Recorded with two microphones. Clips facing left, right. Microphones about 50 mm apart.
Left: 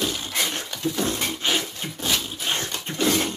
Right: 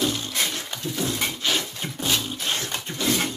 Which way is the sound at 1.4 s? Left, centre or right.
Left.